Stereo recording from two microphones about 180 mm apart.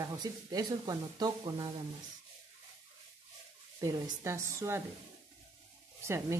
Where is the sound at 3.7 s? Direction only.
15° right (ahead or behind).